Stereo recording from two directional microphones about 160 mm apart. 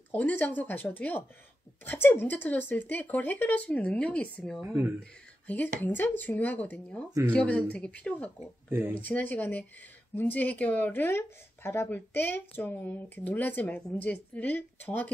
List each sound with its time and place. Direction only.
0.1 s speech: 10° left (ahead or behind)
4.6 s speech: 15° right (ahead or behind)
5.5 s speech: 10° left (ahead or behind)
7.1 s speech: 20° right (ahead or behind)
7.3 s speech: 5° left (ahead or behind)
8.6 s speech: 15° right (ahead or behind)
9.0 s speech: 10° left (ahead or behind)